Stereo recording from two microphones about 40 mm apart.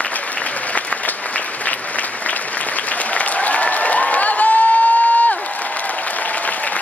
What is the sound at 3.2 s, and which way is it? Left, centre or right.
Applause, left.